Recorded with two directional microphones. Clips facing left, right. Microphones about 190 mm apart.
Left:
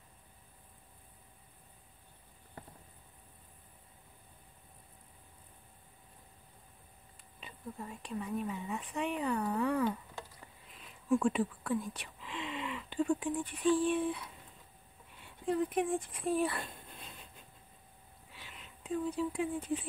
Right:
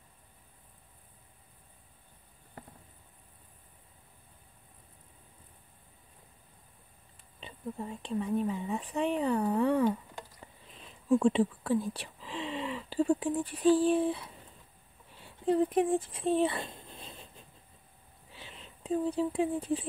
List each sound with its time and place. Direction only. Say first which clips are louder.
7.3 s speech: right 6 dB; 30° right (ahead or behind)
18.3 s speech: right 4 dB; 30° right (ahead or behind)